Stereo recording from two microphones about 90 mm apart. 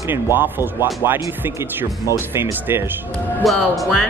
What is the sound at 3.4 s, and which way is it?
Speech, centre (ahead or behind).